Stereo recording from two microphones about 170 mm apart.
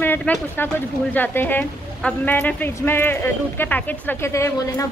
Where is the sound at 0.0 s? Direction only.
10° left (ahead or behind).